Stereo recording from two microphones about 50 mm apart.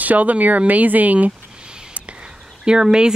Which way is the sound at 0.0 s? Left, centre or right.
Right.